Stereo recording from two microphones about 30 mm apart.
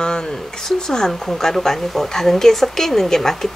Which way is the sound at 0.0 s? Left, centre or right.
Left.